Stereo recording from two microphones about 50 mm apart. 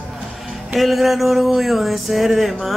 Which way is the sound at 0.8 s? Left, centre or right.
Centre.